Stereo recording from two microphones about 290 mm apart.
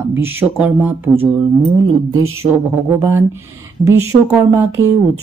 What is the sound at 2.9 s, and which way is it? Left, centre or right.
Speech, centre.